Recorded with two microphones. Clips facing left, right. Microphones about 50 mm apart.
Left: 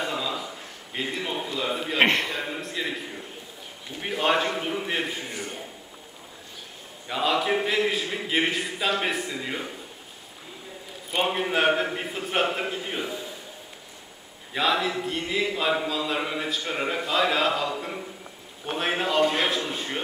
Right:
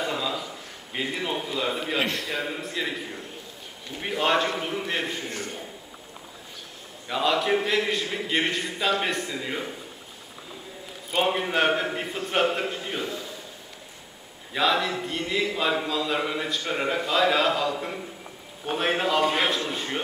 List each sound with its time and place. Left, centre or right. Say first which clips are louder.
0.0 s a sound: right 1 dB; centre
0.9 s a man's voice: right 1 dB; centre
2.0 s a man's voice: left 6 dB; left
2.6 s a man's voice: right 1 dB; centre
4.0 s a man's voice: even; centre
7.1 s a man's voice: right 1 dB; centre
11.2 s a man's voice: left 1 dB; centre
14.5 s a man's voice: right 1 dB; centre